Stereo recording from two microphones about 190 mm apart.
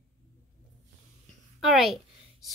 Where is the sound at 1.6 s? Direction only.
Centre (ahead or behind).